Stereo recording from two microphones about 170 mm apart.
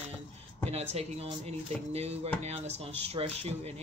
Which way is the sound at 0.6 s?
35° right (ahead or behind).